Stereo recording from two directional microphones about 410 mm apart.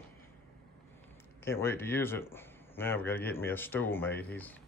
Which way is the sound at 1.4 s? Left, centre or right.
Centre.